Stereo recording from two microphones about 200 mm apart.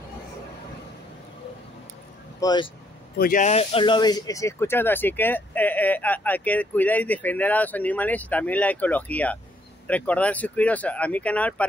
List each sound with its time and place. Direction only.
2.4 s speech: 20° left (ahead or behind)
3.2 s speech: 40° left (ahead or behind); by 11.6 s 5° left (ahead or behind)